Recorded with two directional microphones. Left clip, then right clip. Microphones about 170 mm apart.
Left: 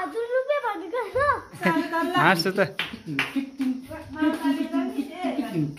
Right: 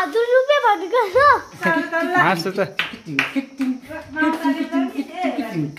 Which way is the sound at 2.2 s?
Centre (ahead or behind).